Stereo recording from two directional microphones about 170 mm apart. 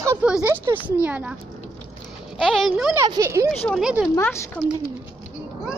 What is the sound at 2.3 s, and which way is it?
Speech, centre (ahead or behind).